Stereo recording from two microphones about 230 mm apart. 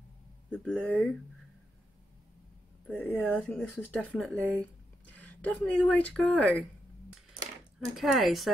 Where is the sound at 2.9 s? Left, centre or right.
Centre.